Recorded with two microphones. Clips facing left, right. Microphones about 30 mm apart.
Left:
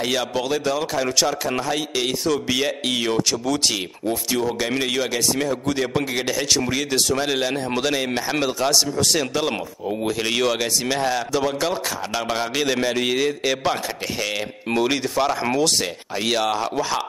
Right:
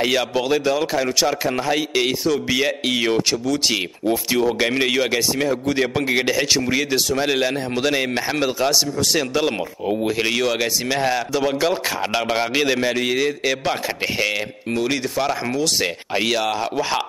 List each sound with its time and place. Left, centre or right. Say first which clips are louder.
0.0 s a man's voice: right 3 dB; centre
4.6 s a man's voice: right 4 dB; right; by 6.0 s centre
6.0 s a man's voice: right 4 dB; centre
12.7 s a man's voice: right 1 dB; centre
14.9 s a man's voice: even; centre
16.3 s a man's voice: left 2 dB; centre